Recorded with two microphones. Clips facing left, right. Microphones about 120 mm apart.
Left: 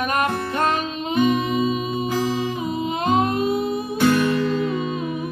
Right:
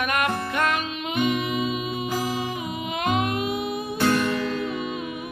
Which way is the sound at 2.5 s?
30° left (ahead or behind).